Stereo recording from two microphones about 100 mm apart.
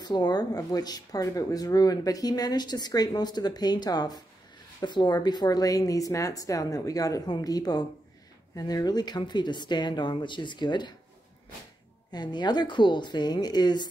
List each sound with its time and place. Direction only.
0.0 s speech: 45° left (ahead or behind)
12.1 s speech: 45° left (ahead or behind)